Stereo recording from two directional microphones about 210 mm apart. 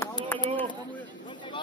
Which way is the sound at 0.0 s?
15° left (ahead or behind).